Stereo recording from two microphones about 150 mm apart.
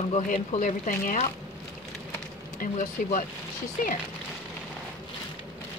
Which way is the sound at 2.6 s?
60° left (ahead or behind).